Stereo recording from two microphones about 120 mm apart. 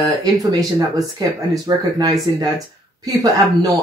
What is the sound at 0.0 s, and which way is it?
Speech, 30° right (ahead or behind).